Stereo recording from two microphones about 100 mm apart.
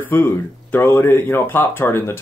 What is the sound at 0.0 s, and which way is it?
Speech, 20° left (ahead or behind).